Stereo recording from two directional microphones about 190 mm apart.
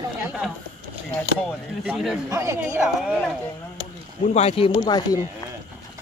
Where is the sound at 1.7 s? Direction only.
5° right (ahead or behind).